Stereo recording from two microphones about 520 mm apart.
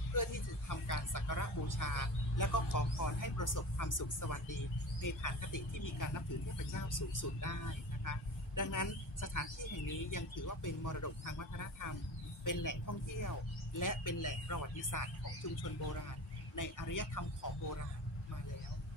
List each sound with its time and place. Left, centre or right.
0.1 s speech: left